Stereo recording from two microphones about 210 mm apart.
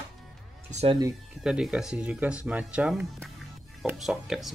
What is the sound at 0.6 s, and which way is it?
Speech, 30° right (ahead or behind).